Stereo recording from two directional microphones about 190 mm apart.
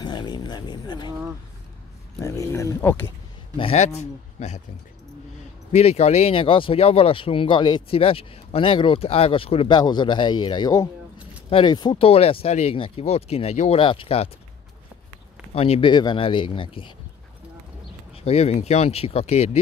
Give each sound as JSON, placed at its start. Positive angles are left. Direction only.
{"t": 0.0, "sound": "speech", "side_deg": 25}
{"t": 2.2, "sound": "speech", "side_deg": 15}
{"t": 3.5, "sound": "speech", "side_deg": 30}
{"t": 5.7, "sound": "speech", "side_deg": 35}
{"t": 15.5, "sound": "speech", "side_deg": 30}
{"t": 18.1, "sound": "speech", "side_deg": 30}